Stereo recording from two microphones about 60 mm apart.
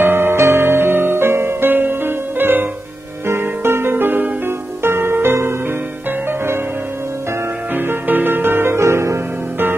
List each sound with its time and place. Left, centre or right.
0.0 s music: right
4.5 s music: right
7.7 s music: right
8.7 s music: right